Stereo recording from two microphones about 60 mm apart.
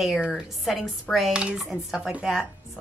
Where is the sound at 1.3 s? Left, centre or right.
Centre.